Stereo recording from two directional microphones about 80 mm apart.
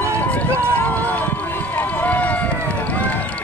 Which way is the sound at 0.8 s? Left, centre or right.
Centre.